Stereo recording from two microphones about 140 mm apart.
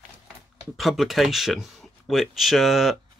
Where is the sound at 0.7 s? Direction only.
Centre (ahead or behind).